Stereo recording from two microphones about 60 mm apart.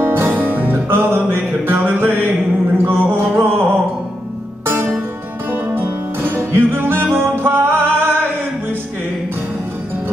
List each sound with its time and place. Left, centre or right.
0.0 s music: right
2.8 s a sound: right
4.6 s music: right